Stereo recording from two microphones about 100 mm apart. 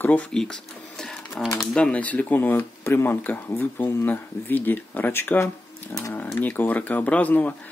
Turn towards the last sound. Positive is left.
turn(degrees=15)  # may be behind; listen again after turning